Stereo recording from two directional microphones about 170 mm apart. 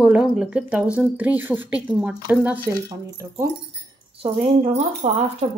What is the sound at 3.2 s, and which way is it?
Speech, 25° right (ahead or behind).